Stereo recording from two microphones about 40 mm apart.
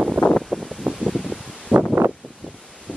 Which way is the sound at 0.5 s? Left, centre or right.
Centre.